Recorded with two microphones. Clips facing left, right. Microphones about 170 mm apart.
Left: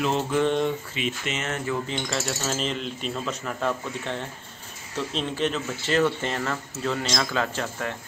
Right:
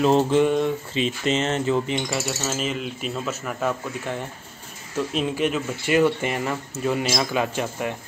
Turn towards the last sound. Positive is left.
turn(degrees=-15)  # may be behind; listen again after turning